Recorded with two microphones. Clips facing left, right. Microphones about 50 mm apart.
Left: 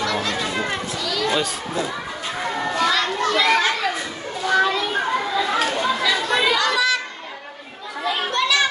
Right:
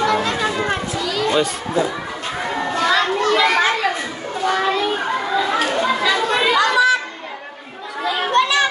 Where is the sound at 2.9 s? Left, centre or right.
Centre.